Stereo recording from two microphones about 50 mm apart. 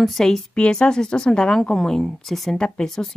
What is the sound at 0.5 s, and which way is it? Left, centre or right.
A woman's voice, left.